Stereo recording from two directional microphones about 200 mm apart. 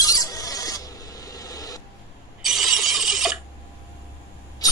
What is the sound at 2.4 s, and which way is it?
Ratchet, centre (ahead or behind).